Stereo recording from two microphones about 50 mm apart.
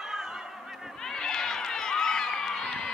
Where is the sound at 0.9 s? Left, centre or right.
Centre.